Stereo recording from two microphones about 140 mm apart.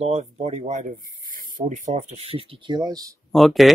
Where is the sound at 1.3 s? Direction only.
70° right (ahead or behind).